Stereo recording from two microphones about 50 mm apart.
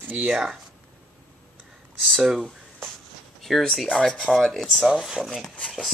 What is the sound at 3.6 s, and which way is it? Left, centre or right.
Speech, centre.